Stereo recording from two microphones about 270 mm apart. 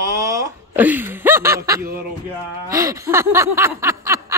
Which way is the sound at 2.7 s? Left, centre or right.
Centre.